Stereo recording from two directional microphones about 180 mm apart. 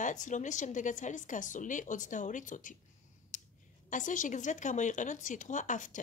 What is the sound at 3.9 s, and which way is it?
Speech, 45° left (ahead or behind).